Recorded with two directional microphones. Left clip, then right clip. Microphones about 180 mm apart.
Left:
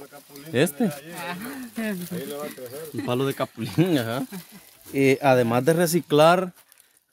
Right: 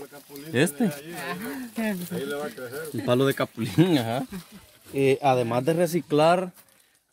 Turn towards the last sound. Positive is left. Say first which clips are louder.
# left 3 dB
turn(degrees=30)  # may be behind; listen again after turning